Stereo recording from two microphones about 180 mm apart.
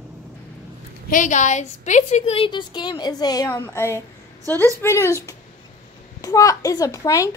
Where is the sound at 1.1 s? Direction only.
45° left (ahead or behind).